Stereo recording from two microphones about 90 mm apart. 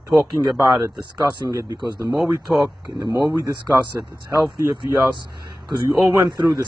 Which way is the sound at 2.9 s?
50° right (ahead or behind).